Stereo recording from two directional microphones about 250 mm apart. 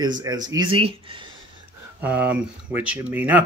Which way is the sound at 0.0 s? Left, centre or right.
Centre.